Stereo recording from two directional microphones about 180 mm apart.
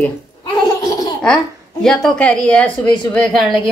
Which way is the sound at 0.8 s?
20° left (ahead or behind).